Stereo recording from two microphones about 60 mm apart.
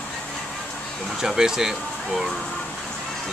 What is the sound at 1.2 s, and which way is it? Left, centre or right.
Speech, centre.